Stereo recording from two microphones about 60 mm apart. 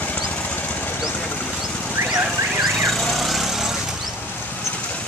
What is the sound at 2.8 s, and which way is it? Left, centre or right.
Vehicle, centre.